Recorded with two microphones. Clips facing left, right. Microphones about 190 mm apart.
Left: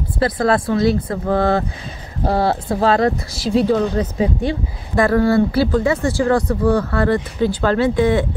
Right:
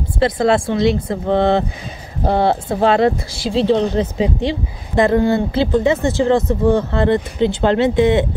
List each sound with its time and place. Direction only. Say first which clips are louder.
0.2 s a woman's voice: right 2 dB; 25° right (ahead or behind)